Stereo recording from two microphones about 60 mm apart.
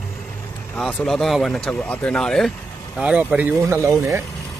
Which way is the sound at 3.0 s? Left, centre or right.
Right.